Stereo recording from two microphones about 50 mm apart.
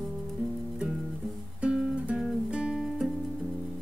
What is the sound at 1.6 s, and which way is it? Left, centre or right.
Music, centre.